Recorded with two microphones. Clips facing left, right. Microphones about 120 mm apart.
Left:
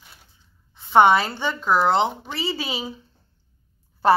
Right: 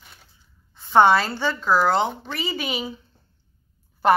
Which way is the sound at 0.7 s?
20° left (ahead or behind).